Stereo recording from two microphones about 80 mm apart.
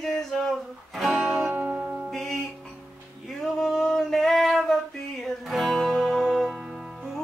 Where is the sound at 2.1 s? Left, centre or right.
Centre.